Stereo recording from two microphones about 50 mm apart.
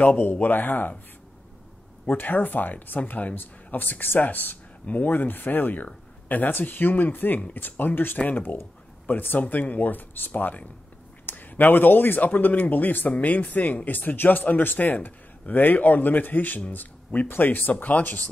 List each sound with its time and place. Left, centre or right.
0.3 s speech: left
2.0 s speech: left